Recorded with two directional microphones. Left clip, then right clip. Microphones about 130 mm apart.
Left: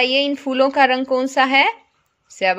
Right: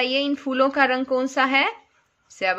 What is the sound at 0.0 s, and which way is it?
A woman's voice, 40° left (ahead or behind).